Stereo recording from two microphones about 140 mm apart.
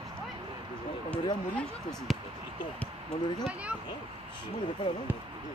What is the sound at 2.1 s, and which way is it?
Speech, centre (ahead or behind).